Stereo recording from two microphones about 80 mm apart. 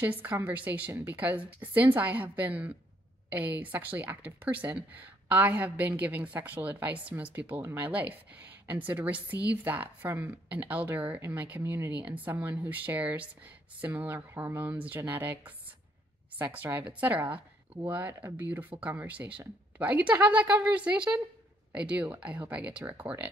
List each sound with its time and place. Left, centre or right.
0.0 s speech: right
14.6 s speech: right